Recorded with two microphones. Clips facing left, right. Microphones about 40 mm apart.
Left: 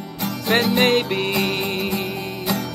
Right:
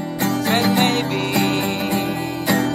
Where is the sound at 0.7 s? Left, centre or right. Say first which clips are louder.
Left 1 dB; left.